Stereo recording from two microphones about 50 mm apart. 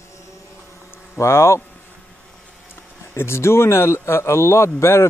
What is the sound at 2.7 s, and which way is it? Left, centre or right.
Speech, left.